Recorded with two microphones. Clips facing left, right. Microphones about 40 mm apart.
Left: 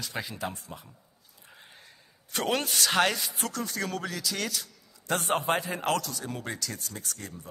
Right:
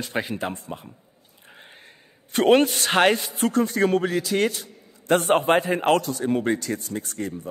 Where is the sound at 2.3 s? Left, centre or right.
Right.